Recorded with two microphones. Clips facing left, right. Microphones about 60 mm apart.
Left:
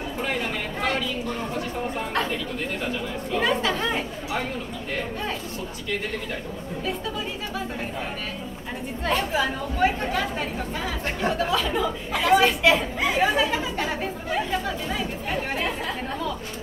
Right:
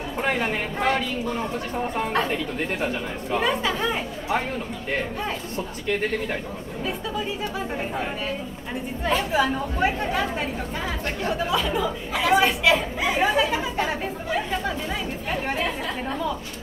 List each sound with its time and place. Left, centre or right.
0.2 s speech: right
2.2 s speech: right
3.3 s speech: centre
9.0 s speech: centre
9.8 s speech: centre